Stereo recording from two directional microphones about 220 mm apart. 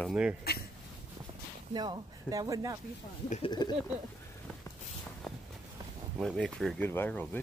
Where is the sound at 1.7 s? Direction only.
20° right (ahead or behind).